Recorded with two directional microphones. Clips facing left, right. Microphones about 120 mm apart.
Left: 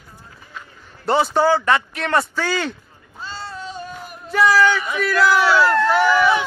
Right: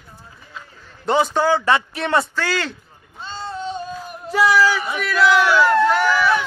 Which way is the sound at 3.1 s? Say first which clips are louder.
Right 3 dB; 20° right (ahead or behind).